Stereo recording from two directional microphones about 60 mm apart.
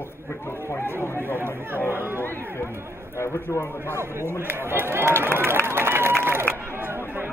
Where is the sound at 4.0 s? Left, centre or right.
Right.